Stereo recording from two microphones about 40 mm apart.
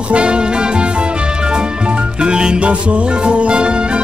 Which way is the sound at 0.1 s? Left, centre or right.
Right.